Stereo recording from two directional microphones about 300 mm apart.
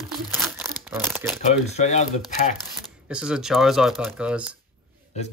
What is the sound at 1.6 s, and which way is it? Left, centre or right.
Speech, left.